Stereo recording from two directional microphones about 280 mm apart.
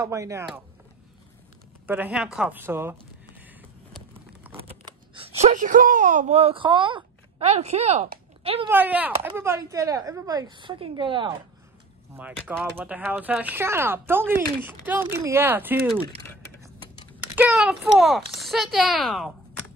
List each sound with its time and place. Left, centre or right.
0.0 s speech: centre
1.9 s speech: centre
3.9 s a sound: centre
4.6 s speech: centre
8.6 s speech: centre
12.2 s speech: centre
17.4 s speech: centre